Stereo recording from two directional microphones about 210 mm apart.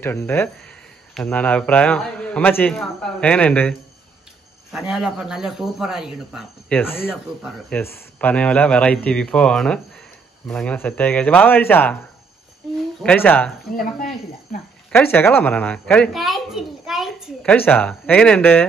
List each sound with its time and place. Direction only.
0.0 s speech: 10° left (ahead or behind)
6.8 s speech: 10° left (ahead or behind)
13.0 s speech: 10° left (ahead or behind)
13.7 s speech: 40° left (ahead or behind)
14.9 s a woman's voice: 10° left (ahead or behind)